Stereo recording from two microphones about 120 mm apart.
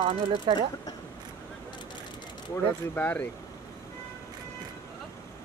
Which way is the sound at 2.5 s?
15° left (ahead or behind).